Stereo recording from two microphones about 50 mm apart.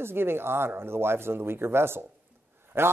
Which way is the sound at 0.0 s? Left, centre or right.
Right.